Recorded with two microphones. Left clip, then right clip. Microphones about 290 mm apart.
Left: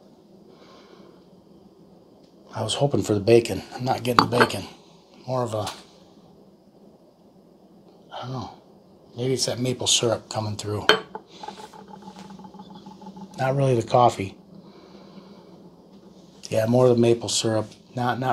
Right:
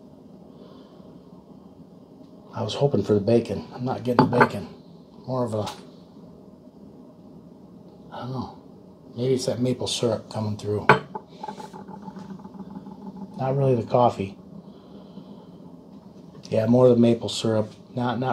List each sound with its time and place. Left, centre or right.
2.5 s speech: left
9.1 s speech: left
13.4 s speech: left
16.4 s speech: left